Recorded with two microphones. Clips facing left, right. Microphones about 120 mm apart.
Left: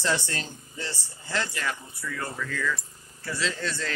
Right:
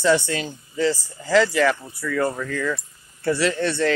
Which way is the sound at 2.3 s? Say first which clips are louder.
Right 5 dB; 45° right (ahead or behind).